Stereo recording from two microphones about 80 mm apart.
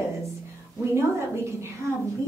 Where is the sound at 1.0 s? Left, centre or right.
Right.